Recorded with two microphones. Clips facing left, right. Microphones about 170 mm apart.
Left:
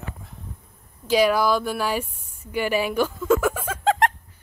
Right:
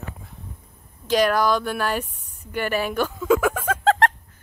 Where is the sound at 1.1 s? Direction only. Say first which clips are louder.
Even; 10° left (ahead or behind).